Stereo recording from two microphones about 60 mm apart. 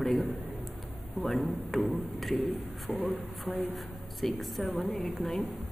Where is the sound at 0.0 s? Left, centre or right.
Centre.